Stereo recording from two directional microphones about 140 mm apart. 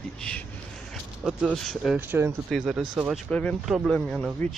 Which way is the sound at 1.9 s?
15° right (ahead or behind).